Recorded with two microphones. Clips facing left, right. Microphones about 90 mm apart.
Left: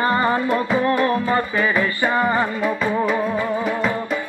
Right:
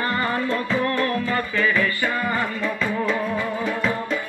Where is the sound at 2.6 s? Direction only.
10° left (ahead or behind).